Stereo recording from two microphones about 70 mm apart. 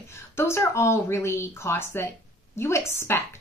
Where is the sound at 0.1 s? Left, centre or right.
Left.